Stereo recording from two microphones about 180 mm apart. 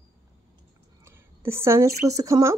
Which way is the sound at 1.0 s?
15° right (ahead or behind).